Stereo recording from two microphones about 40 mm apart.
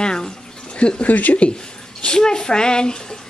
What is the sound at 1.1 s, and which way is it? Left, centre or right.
Speech, left.